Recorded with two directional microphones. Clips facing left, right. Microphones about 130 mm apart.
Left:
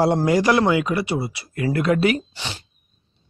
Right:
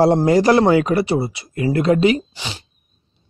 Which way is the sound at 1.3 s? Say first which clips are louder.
Right 3 dB; 25° right (ahead or behind).